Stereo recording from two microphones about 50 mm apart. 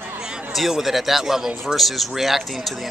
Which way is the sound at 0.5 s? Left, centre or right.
Centre.